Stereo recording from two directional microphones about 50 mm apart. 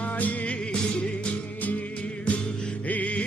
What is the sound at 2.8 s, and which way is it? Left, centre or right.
Music, left.